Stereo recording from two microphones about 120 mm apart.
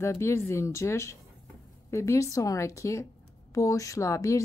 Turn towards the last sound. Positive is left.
turn(degrees=25)  # may be behind; listen again after turning